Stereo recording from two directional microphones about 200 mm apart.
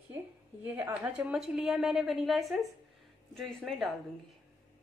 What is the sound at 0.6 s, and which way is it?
A woman's voice, 10° right (ahead or behind).